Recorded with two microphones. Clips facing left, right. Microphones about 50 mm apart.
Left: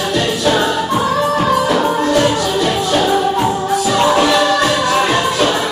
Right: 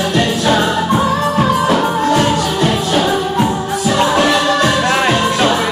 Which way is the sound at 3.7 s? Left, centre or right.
Centre.